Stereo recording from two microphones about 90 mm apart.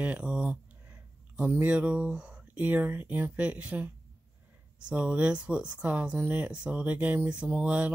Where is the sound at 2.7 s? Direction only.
20° right (ahead or behind).